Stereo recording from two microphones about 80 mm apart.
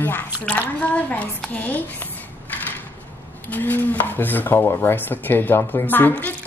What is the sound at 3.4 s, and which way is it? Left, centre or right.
Speech, left.